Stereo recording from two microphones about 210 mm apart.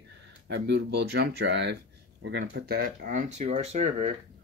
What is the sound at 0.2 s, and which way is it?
Speech, 55° right (ahead or behind).